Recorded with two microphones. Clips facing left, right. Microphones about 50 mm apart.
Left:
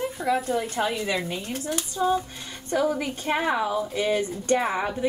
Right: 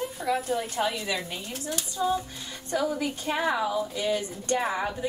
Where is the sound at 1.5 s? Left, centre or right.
Left.